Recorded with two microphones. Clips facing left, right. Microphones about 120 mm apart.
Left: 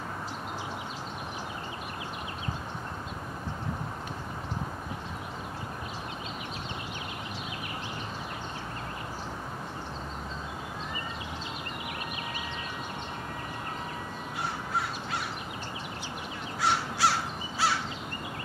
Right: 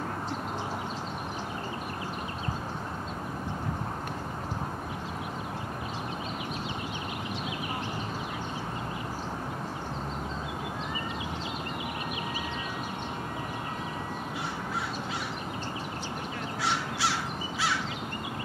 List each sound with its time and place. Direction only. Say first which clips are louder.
16.6 s crow: left 4 dB; 45° left (ahead or behind)